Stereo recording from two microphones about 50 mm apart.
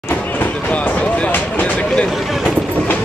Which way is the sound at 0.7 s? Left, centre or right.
Left.